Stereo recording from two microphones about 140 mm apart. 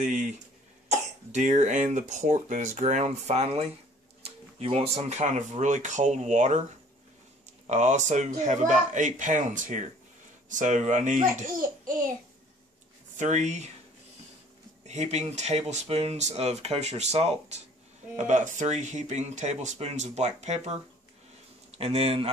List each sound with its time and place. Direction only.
0.0 s speech: 65° right (ahead or behind)
7.6 s speech: 55° right (ahead or behind); by 12.1 s 85° right
13.2 s speech: 60° right (ahead or behind)
14.9 s speech: 55° right (ahead or behind)
21.7 s speech: 45° right (ahead or behind)